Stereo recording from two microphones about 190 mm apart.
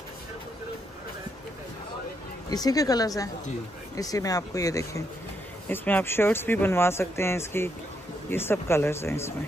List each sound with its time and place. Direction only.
2.5 s a woman's voice: 20° left (ahead or behind)